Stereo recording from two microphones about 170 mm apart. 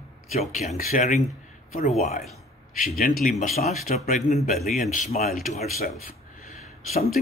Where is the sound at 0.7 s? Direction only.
50° left (ahead or behind).